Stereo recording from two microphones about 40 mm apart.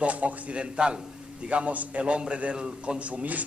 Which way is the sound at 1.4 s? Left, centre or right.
Right.